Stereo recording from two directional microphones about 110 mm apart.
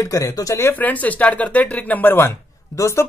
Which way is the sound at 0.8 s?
15° left (ahead or behind).